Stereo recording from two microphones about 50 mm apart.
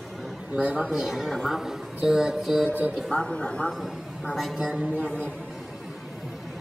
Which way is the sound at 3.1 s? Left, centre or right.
Centre.